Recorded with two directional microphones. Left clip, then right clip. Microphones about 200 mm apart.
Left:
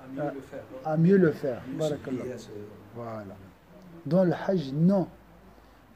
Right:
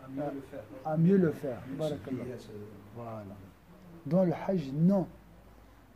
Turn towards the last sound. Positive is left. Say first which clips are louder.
# left 4 dB
turn(degrees=10)  # may be behind; listen again after turning